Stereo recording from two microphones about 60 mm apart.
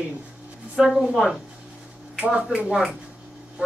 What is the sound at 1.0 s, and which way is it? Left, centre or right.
Speech, centre.